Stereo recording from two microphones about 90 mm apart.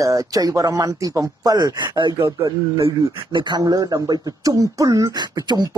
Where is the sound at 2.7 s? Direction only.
65° right (ahead or behind).